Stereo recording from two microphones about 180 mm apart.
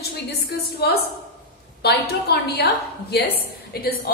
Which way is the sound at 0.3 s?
65° left (ahead or behind).